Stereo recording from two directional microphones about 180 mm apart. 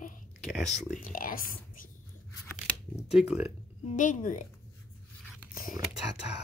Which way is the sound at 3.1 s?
5° right (ahead or behind).